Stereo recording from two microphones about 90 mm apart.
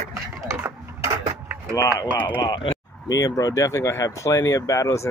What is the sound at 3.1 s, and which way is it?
Speech, 40° left (ahead or behind).